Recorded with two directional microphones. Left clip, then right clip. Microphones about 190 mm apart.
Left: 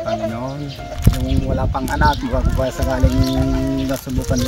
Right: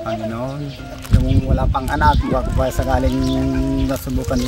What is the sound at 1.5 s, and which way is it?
Speech, 20° right (ahead or behind).